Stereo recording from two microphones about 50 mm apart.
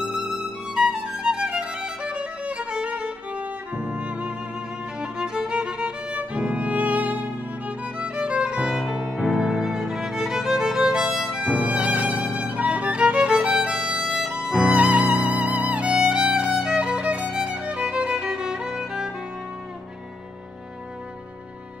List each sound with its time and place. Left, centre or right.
0.7 s music: centre
11.1 s violin: centre
14.0 s music: centre
14.6 s music: right